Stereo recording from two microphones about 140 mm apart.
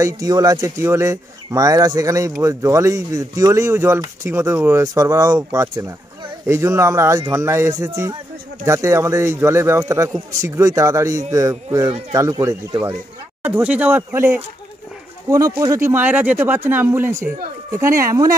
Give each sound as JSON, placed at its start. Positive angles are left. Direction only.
{"t": 0.0, "sound": "speech", "side_deg": -25}